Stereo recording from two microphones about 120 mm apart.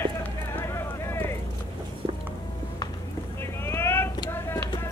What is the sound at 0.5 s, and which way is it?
Vehicle, 20° left (ahead or behind).